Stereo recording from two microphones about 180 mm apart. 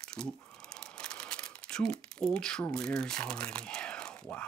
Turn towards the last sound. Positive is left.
turn(degrees=5)  # may be behind; listen again after turning